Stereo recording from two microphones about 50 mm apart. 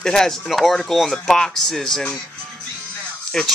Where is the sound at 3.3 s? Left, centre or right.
Centre.